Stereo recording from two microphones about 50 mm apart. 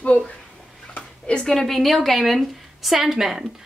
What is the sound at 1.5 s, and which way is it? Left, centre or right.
A woman's voice, centre.